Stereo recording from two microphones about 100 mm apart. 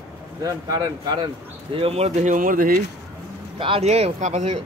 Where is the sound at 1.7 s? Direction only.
80° right.